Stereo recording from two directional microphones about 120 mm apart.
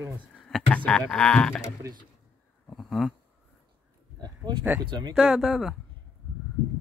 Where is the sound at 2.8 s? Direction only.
Centre (ahead or behind).